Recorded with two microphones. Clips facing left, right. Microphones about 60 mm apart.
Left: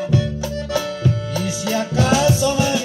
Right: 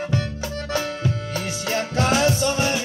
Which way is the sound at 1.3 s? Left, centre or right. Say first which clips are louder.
Left 4 dB; right.